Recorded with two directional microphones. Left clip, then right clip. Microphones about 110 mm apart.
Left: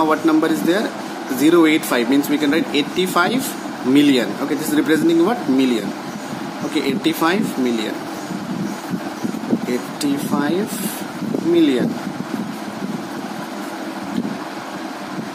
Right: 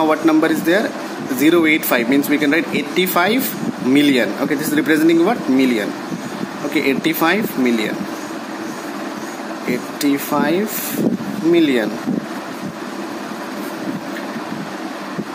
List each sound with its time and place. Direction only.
0.0 s speech: 10° right (ahead or behind)
10.3 s speech: 20° right (ahead or behind)